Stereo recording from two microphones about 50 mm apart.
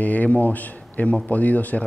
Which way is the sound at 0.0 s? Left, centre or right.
Left.